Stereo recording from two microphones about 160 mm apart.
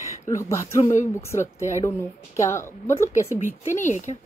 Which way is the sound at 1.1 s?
15° left (ahead or behind).